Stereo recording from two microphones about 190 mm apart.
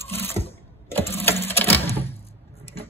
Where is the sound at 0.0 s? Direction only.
10° left (ahead or behind).